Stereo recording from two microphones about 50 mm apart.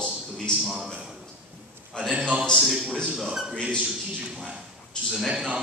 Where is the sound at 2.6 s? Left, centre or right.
Centre.